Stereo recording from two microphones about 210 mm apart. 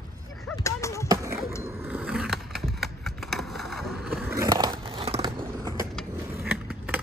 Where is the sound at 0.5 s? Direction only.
15° left (ahead or behind).